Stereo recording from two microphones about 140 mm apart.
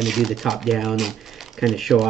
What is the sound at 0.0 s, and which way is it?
Speech, centre (ahead or behind).